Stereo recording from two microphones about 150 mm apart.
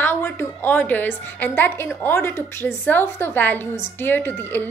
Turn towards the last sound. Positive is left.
turn(degrees=15)  # may be behind; listen again after turning